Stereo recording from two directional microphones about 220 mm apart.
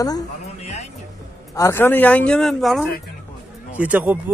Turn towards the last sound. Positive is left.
turn(degrees=-10)  # may be behind; listen again after turning